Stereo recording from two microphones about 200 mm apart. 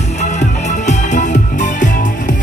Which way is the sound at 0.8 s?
40° left (ahead or behind).